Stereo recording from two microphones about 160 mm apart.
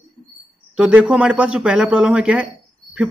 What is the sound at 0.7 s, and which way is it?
A man's voice, 5° right (ahead or behind).